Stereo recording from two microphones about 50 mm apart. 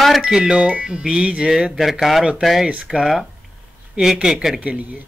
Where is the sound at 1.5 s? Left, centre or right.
Centre.